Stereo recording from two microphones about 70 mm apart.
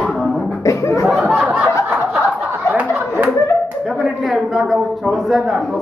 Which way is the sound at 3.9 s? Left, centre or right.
Centre.